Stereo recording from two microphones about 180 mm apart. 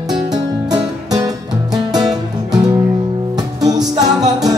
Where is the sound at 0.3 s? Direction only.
20° right (ahead or behind).